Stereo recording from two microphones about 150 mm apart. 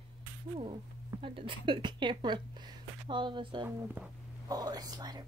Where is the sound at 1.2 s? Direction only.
35° right (ahead or behind).